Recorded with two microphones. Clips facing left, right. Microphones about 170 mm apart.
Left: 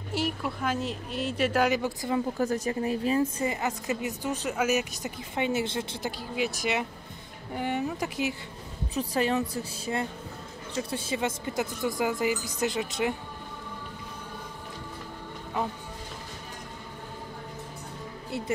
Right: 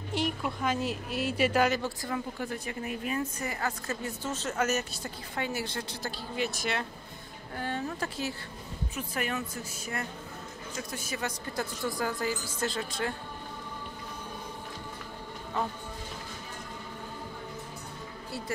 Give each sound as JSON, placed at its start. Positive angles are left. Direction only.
{"t": 0.1, "sound": "a woman's voice", "side_deg": 5}
{"t": 1.7, "sound": "a woman's voice", "side_deg": 15}
{"t": 2.3, "sound": "a woman's voice", "side_deg": 40}
{"t": 8.9, "sound": "a woman's voice", "side_deg": 35}